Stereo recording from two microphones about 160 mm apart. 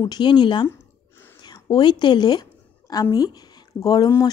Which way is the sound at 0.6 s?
15° left (ahead or behind).